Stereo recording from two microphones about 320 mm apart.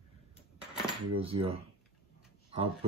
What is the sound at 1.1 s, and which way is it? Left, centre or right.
Speech, centre.